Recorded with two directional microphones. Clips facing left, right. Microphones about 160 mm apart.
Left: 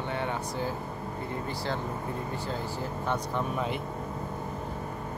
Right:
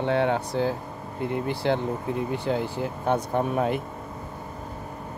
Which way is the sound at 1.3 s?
65° right (ahead or behind).